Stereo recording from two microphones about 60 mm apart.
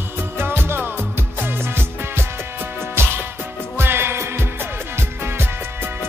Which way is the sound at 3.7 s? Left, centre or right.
Right.